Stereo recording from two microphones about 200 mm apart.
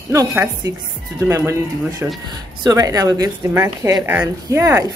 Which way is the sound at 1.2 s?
15° right (ahead or behind).